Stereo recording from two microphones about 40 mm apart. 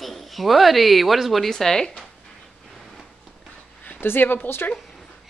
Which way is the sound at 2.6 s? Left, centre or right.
Centre.